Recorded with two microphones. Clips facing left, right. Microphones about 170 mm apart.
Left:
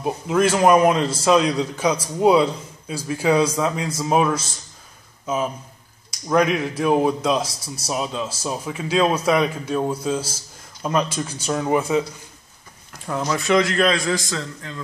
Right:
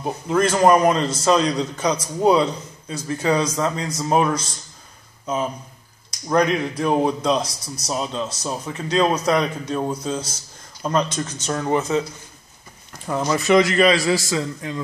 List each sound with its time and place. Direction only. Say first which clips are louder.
0.0 s a man's voice: left 1 dB; 5° left (ahead or behind)
7.4 s a man's voice: even; 25° left (ahead or behind)
7.9 s a man's voice: even; 5° left (ahead or behind)
13.0 s a man's voice: right 2 dB; centre (ahead or behind)